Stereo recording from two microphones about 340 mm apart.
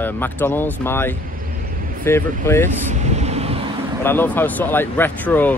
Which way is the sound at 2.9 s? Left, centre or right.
Centre.